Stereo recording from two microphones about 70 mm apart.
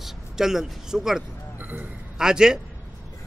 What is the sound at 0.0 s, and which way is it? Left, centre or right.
Speech, centre.